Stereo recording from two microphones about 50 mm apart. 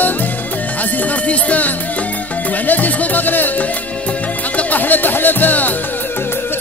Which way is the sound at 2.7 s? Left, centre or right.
Left.